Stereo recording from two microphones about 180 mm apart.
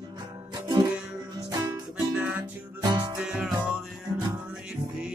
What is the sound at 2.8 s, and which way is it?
Music, 25° right (ahead or behind).